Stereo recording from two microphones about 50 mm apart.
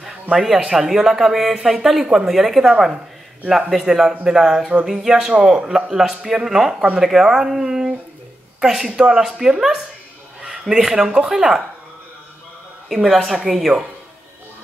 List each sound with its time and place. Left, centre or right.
0.0 s a sound: centre
0.6 s speech: centre
3.8 s speech: centre
12.8 s speech: centre